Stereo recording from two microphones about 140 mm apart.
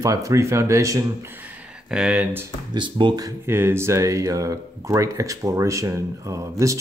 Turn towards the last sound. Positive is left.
turn(degrees=-20)  # may be behind; listen again after turning